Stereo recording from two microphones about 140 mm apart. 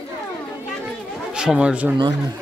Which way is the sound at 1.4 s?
5° right (ahead or behind).